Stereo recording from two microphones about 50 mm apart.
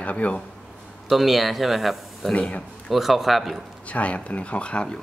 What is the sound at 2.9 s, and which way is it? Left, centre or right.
Speech, centre.